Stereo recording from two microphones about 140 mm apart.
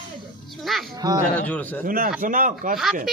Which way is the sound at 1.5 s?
10° left (ahead or behind).